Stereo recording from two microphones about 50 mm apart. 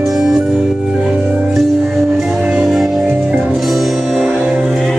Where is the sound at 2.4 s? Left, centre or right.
Centre.